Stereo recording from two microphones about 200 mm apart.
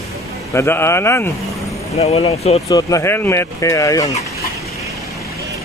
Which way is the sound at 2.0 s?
30° left (ahead or behind).